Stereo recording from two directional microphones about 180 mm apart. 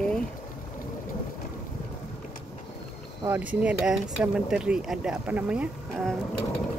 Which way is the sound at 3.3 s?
10° right (ahead or behind).